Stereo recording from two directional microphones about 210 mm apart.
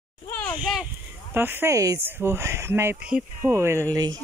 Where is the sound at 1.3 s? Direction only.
10° right (ahead or behind).